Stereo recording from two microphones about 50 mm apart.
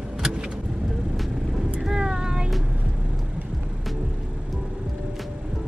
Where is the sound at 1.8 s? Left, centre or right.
Centre.